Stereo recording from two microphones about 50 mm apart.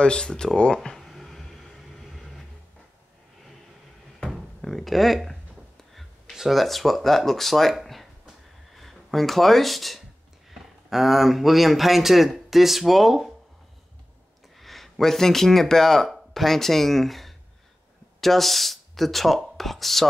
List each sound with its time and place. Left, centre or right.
0.0 s speech: centre
0.7 s a sound: centre
4.2 s cupboard open or close: centre
5.9 s speech: centre
7.8 s a sound: centre
10.5 s speech: centre
14.6 s speech: centre